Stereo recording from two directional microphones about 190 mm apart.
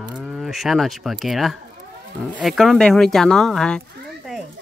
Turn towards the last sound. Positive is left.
turn(degrees=0)  # may be behind; listen again after turning